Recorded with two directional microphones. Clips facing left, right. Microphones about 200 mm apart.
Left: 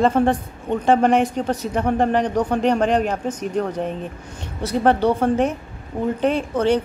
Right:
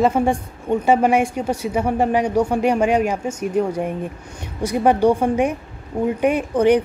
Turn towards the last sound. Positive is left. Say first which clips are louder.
# right 3 dB
turn(degrees=-15)  # may be behind; listen again after turning